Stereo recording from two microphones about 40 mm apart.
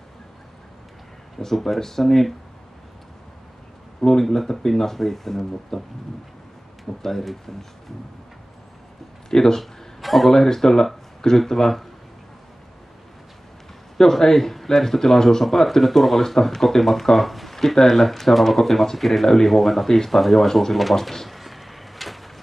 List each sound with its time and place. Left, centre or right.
1.4 s speech: centre
4.0 s speech: centre
7.0 s speech: centre
9.3 s speech: centre
10.0 s speech: centre
13.9 s speech: centre